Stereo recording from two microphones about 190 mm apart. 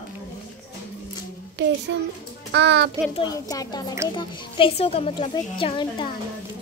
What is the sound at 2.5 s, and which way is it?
Speech, 65° right (ahead or behind).